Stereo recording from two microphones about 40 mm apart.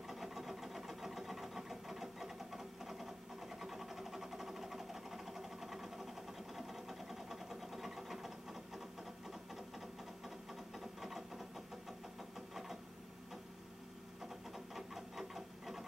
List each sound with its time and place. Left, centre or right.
0.0 s sewing machine: centre
12.2 s vehicle: centre
14.2 s sewing machine: centre